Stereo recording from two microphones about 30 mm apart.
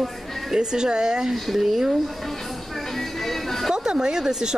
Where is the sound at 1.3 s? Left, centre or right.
Centre.